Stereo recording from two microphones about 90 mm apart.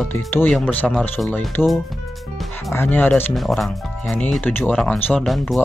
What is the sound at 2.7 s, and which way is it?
Speech, 25° left (ahead or behind).